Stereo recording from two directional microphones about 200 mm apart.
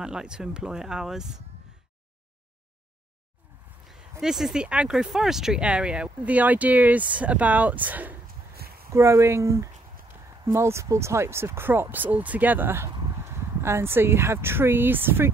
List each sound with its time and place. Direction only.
0.0 s speech: 5° right (ahead or behind)
4.2 s speech: centre (ahead or behind)
8.3 s a sound: 50° right (ahead or behind)
8.9 s speech: 15° right (ahead or behind)